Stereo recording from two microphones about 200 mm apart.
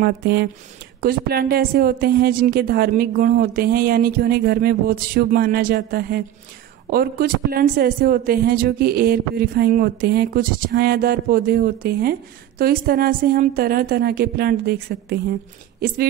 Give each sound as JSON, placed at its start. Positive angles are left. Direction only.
{"t": 0.0, "sound": "speech", "side_deg": -55}